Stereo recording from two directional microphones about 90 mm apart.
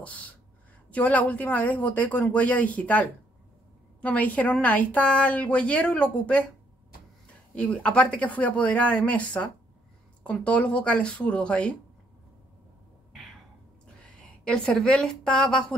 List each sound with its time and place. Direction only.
0.0 s a woman's voice: 15° left (ahead or behind)
7.5 s a woman's voice: 10° left (ahead or behind)
14.4 s a woman's voice: 10° left (ahead or behind)